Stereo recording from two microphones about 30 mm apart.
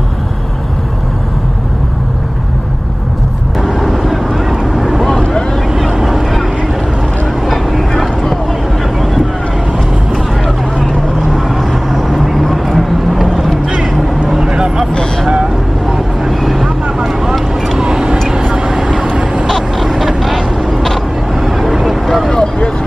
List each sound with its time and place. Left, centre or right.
3.6 s vehicle: centre
6.0 s vehicle: centre
7.4 s vehicle: centre
11.3 s vehicle: centre
14.5 s vehicle: right
16.3 s vehicle: centre
19.0 s vehicle: right
20.7 s vehicle: centre
21.4 s vehicle: centre
22.0 s vehicle: centre
22.3 s vehicle: left